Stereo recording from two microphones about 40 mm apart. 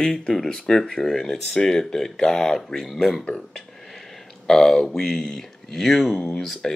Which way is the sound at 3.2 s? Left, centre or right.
Centre.